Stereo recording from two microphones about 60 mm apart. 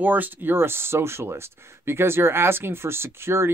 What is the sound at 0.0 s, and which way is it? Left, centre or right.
Speech, right.